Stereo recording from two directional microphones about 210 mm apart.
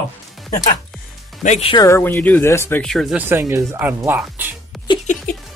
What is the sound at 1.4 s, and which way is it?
Speech, 30° left (ahead or behind).